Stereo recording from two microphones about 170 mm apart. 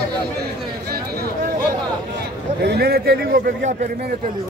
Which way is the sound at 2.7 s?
70° right (ahead or behind).